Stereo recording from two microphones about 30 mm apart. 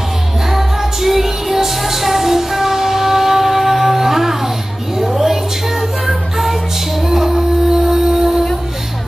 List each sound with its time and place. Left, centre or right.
0.5 s music: centre
4.9 s a sound: centre
7.1 s music: centre